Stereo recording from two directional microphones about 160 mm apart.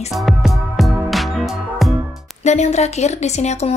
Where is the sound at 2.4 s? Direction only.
45° left (ahead or behind).